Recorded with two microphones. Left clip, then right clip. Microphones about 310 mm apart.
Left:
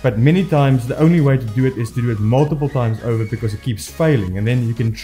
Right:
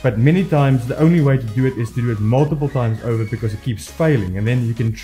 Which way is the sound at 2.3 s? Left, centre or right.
Left.